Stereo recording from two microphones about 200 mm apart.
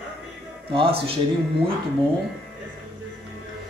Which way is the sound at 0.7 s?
30° right (ahead or behind).